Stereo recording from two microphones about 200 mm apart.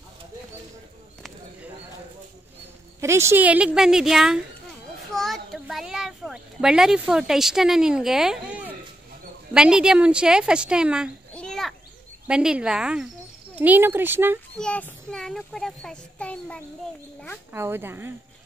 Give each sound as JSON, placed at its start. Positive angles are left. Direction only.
{"t": 3.0, "sound": "a child's voice", "side_deg": -15}
{"t": 5.1, "sound": "a sound", "side_deg": 0}
{"t": 9.5, "sound": "a child's voice", "side_deg": -5}
{"t": 14.6, "sound": "a child's voice", "side_deg": 5}
{"t": 17.5, "sound": "speech", "side_deg": -10}